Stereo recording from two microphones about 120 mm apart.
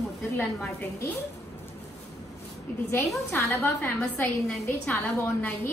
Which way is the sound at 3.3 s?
15° left (ahead or behind).